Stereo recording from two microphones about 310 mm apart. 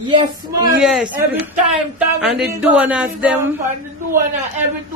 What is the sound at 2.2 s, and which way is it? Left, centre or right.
Speech, centre.